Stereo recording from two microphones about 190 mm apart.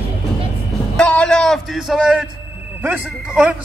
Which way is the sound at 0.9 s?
5° left (ahead or behind).